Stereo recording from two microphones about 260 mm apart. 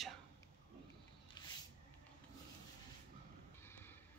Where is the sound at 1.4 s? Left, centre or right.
Centre.